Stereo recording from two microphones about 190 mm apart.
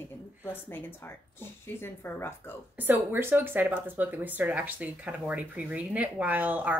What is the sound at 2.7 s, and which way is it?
Speech, 10° right (ahead or behind).